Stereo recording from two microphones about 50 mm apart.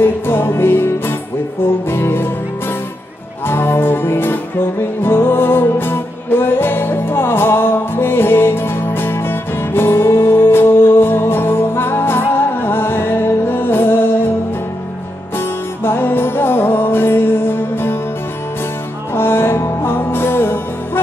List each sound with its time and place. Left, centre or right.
0.0 s music: left
3.4 s music: left
15.3 s music: left
19.1 s music: left